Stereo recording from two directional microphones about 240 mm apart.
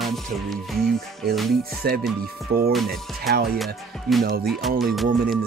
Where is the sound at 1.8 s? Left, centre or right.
Right.